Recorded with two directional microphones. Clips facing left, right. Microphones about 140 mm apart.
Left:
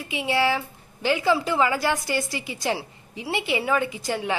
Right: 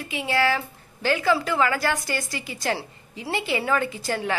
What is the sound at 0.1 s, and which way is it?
A woman's voice, 20° left (ahead or behind).